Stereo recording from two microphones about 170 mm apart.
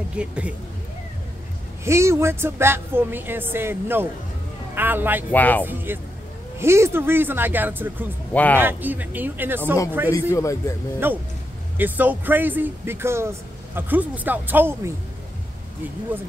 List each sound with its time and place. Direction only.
0.2 s speech: 5° right (ahead or behind)
1.9 s speech: 15° right (ahead or behind)
5.3 s speech: 10° left (ahead or behind)
5.7 s speech: 10° right (ahead or behind)
8.3 s speech: 10° left (ahead or behind)
8.5 s speech: 10° right (ahead or behind)
10.1 s speech: 20° left (ahead or behind)
11.0 s speech: 15° right (ahead or behind)